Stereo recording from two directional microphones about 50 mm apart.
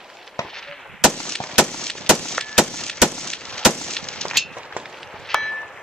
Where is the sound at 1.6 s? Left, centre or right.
Centre.